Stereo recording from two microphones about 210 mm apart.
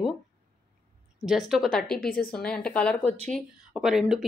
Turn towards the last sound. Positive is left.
turn(degrees=0)  # may be behind; listen again after turning